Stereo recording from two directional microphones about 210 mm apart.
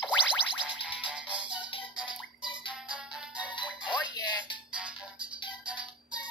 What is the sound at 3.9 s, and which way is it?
Music, 20° left (ahead or behind).